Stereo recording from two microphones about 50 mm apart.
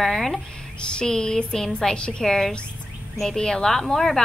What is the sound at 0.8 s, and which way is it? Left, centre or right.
A woman's voice, centre.